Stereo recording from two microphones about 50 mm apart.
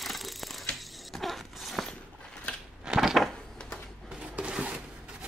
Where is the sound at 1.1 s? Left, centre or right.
Centre.